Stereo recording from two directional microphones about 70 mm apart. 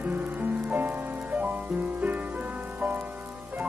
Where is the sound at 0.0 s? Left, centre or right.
Right.